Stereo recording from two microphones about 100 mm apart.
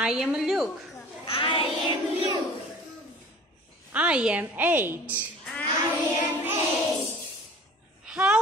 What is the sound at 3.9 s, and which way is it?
A woman's voice, 10° right (ahead or behind).